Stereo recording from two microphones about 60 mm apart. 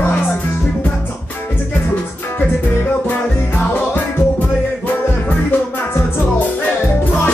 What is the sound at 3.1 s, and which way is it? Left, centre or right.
Music, left.